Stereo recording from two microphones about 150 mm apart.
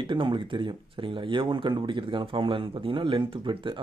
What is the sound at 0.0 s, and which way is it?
Speech, 35° right (ahead or behind).